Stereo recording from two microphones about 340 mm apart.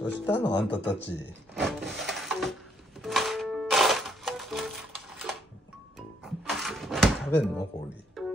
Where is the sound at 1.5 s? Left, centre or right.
Centre.